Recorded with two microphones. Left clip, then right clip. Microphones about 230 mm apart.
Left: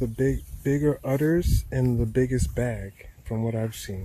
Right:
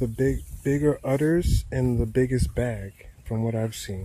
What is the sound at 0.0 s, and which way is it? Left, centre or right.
Speech, centre.